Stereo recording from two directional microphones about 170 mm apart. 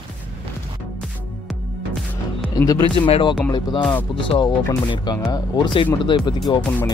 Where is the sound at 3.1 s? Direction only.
30° left (ahead or behind).